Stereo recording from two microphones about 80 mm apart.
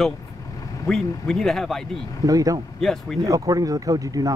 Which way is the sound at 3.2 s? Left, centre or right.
Right.